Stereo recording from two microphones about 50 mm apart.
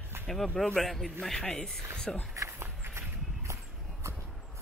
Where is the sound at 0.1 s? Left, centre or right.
Right.